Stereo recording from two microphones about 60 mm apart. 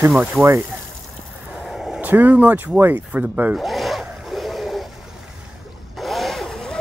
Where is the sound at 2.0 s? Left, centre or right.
Right.